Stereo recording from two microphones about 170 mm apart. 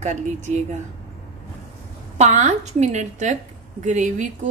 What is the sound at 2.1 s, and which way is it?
A woman's voice, 45° right (ahead or behind).